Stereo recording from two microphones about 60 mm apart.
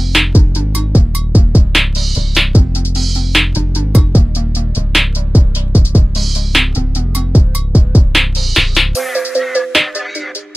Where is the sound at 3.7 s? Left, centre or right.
Right.